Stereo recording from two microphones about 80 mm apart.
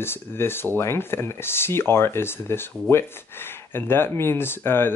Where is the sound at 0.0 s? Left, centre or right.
Left.